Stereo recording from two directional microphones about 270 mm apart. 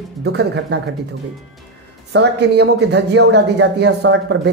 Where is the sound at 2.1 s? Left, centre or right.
Right.